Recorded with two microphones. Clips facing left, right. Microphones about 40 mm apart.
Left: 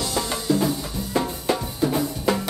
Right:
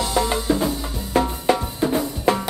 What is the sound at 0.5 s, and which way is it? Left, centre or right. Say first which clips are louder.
Music: left 1 dB; right.